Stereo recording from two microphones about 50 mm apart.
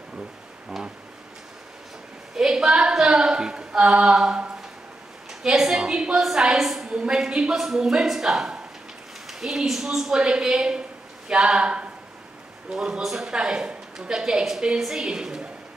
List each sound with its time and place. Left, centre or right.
2.3 s a woman's voice: centre
5.4 s a sound: centre
5.9 s a woman's voice: centre
6.2 s a woman's voice: centre